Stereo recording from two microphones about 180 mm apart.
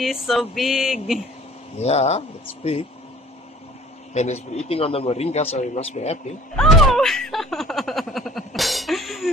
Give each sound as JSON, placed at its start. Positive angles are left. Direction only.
{"t": 0.0, "sound": "speech", "side_deg": 0}
{"t": 1.8, "sound": "a man's voice", "side_deg": 35}
{"t": 4.1, "sound": "a man's voice", "side_deg": 40}
{"t": 6.5, "sound": "speech", "side_deg": 0}